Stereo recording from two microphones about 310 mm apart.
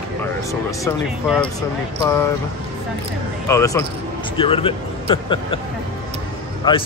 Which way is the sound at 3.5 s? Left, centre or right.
Centre.